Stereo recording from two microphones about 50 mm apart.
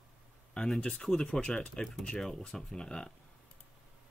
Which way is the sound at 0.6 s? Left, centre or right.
Centre.